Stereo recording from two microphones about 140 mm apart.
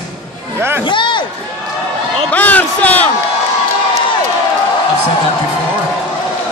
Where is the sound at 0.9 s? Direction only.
35° left (ahead or behind).